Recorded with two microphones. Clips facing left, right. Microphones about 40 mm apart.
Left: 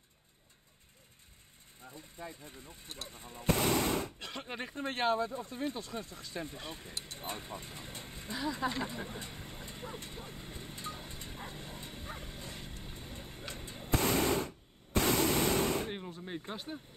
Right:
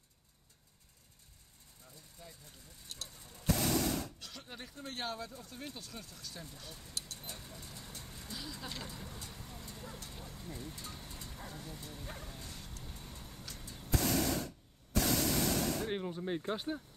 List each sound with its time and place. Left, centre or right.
1.9 s speech: left
12.1 s bow-wow: left
12.8 s a sound: left
15.9 s speech: centre